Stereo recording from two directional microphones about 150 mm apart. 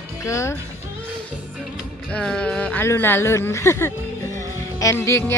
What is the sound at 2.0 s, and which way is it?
Speech, 5° left (ahead or behind).